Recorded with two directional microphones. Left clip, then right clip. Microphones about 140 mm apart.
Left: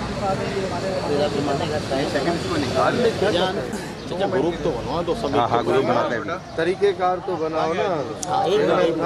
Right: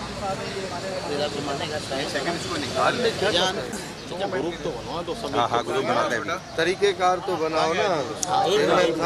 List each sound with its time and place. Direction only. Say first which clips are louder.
1.1 s speech: left 5 dB; 10° left (ahead or behind)